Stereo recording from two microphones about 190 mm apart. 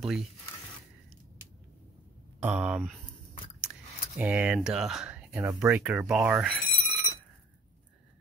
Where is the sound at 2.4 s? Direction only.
5° right (ahead or behind).